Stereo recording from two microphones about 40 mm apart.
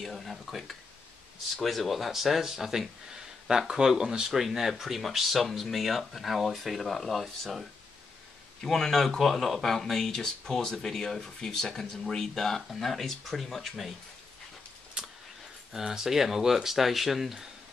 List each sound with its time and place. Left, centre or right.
0.0 s speech: centre
8.6 s speech: centre
15.0 s vehicle: right
15.7 s speech: centre